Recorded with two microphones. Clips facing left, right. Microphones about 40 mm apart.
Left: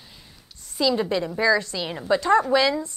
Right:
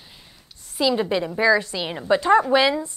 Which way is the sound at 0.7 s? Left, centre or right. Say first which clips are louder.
Right 1 dB; centre.